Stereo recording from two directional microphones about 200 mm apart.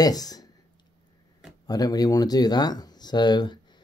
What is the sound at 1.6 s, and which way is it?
Speech, 20° left (ahead or behind).